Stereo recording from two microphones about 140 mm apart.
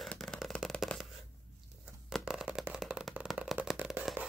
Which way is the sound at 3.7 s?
15° right (ahead or behind).